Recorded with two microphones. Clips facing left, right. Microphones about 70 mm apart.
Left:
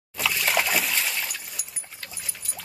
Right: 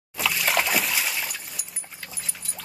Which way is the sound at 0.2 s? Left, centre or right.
Centre.